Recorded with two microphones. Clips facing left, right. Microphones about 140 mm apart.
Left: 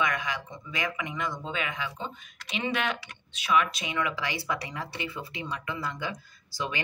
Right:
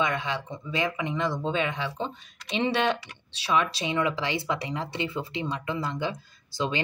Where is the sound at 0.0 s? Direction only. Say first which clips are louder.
Right 2 dB; 25° right (ahead or behind).